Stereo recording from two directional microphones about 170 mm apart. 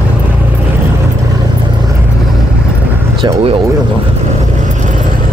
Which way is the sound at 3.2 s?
35° right (ahead or behind).